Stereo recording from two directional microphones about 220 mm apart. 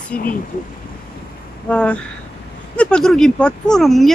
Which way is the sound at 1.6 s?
5° left (ahead or behind).